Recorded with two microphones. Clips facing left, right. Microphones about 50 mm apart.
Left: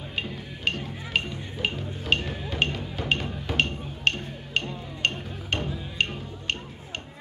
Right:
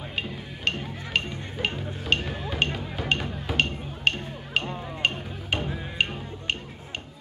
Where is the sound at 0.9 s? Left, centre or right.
Centre.